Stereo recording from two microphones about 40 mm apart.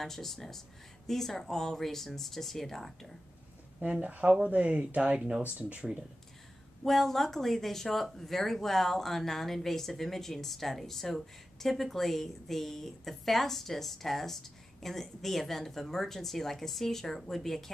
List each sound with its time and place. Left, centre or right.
0.0 s speech: centre
3.8 s speech: right
6.8 s speech: centre